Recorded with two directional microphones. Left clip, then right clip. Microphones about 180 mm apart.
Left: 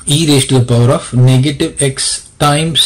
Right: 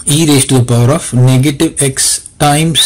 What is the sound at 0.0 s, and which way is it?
Speech, 25° right (ahead or behind).